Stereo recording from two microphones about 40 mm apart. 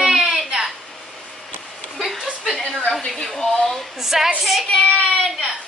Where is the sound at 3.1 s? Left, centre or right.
Centre.